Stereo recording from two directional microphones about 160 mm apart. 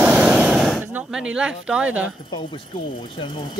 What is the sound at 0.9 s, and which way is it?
Speech, 5° right (ahead or behind).